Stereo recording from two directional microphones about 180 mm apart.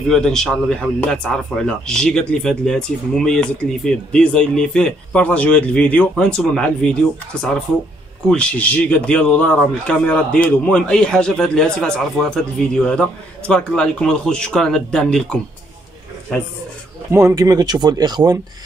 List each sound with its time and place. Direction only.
0.1 s speech: 5° left (ahead or behind)
8.3 s speech: 5° left (ahead or behind)
17.1 s speech: 15° right (ahead or behind)